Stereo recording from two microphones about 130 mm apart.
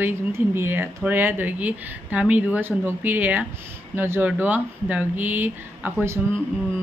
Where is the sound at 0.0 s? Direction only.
20° right (ahead or behind).